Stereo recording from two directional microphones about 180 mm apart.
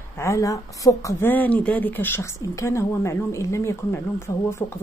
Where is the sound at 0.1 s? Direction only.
15° left (ahead or behind).